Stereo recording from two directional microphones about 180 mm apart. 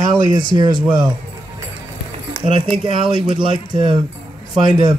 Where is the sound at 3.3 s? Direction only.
25° right (ahead or behind).